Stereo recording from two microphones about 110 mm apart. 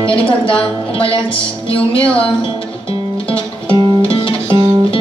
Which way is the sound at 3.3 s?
55° left (ahead or behind).